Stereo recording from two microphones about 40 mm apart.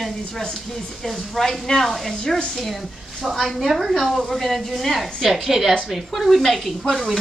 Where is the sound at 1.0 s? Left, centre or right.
Centre.